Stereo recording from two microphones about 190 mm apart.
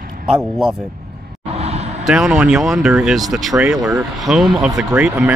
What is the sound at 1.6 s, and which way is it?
Vehicle, 35° right (ahead or behind).